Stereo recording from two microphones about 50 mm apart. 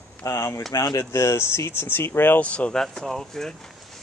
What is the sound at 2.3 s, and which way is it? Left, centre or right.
Speech, left.